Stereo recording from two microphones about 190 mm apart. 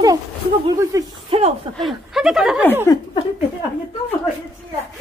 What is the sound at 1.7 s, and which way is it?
Speech, centre (ahead or behind).